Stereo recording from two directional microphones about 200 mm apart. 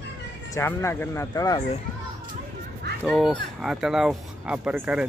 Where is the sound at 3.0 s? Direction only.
Centre (ahead or behind).